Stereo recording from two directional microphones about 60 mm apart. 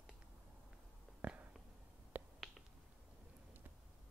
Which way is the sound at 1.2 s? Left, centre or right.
Right.